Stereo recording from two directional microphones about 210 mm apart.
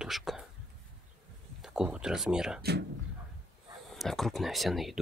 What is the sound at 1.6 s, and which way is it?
Speech, 5° right (ahead or behind).